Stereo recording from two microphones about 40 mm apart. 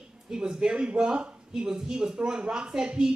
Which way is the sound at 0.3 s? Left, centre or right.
Centre.